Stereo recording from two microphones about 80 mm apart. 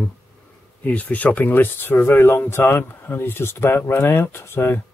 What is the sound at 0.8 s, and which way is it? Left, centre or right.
Speech, centre.